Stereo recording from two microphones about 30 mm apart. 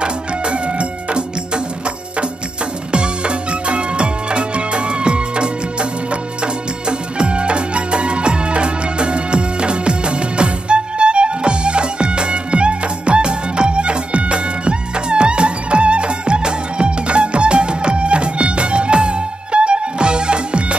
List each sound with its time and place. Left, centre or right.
0.0 s music: right
2.9 s music: right